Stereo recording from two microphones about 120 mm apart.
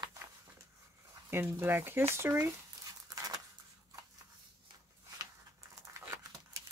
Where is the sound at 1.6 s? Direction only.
20° right (ahead or behind).